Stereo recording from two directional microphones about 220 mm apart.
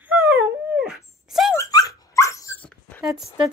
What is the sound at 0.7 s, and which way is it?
Dog, centre (ahead or behind).